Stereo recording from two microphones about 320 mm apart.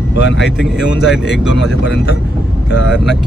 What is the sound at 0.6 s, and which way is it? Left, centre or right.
Speech, centre.